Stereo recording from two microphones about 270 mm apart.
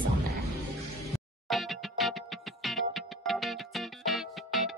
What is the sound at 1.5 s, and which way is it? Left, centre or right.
Music, centre.